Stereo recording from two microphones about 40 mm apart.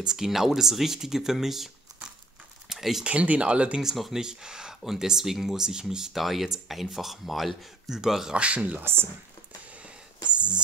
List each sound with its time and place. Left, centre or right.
0.0 s speech: centre
2.7 s a sound: centre
3.1 s speech: right
3.8 s speech: centre
4.2 s speech: centre
6.1 s speech: centre
8.3 s speech: right
9.7 s a sound: right